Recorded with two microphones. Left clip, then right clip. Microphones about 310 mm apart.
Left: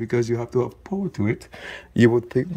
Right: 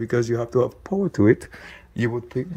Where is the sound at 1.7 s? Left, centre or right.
Left.